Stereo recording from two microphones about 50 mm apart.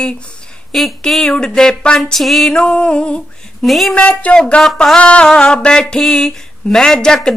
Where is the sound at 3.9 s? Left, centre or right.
Centre.